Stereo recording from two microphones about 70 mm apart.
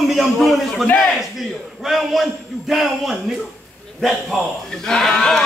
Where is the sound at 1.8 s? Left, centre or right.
Centre.